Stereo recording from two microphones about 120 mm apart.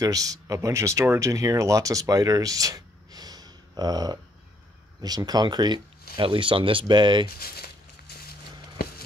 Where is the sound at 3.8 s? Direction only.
35° right (ahead or behind).